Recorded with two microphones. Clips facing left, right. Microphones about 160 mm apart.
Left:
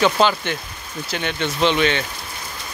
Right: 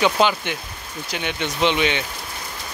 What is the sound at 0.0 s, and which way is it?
Speech, 15° right (ahead or behind).